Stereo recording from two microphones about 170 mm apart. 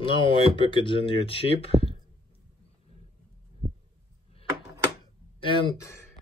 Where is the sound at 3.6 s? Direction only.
30° right (ahead or behind).